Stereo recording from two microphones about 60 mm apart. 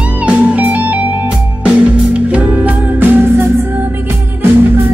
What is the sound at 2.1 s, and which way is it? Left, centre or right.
Music, right.